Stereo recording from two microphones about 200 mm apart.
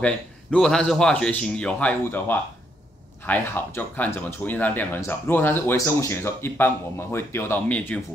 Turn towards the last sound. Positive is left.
turn(degrees=10)  # may be behind; listen again after turning